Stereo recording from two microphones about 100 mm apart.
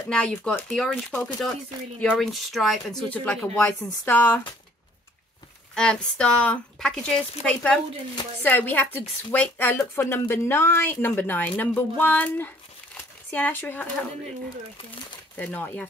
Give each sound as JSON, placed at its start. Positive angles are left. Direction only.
{"t": 0.1, "sound": "speech", "side_deg": 5}
{"t": 3.5, "sound": "speech", "side_deg": 20}
{"t": 5.8, "sound": "speech", "side_deg": 10}
{"t": 15.3, "sound": "speech", "side_deg": 20}